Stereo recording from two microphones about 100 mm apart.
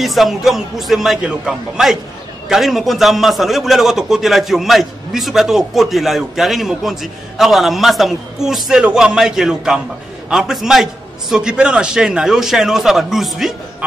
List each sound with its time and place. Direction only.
0.0 s a man's voice: centre (ahead or behind)